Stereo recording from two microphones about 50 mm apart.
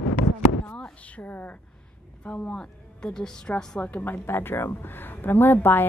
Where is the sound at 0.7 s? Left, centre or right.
Left.